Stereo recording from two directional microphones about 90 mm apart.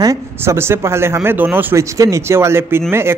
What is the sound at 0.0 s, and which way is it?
Speech, 35° right (ahead or behind).